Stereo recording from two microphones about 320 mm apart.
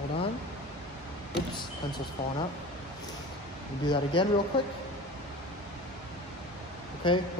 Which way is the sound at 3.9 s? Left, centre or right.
Centre.